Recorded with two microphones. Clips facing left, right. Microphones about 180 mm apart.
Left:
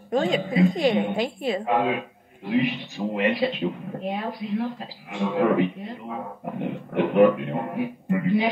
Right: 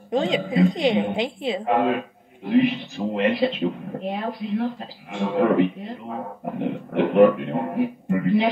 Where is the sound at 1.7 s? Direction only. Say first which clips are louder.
Right 4 dB; centre (ahead or behind).